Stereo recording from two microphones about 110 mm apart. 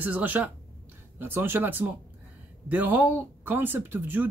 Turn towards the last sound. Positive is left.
turn(degrees=-15)  # may be behind; listen again after turning